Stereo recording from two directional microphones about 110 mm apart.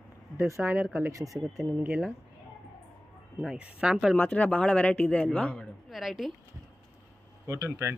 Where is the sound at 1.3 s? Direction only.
Centre (ahead or behind).